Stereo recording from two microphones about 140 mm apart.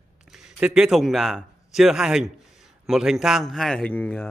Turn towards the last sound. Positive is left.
turn(degrees=10)  # may be behind; listen again after turning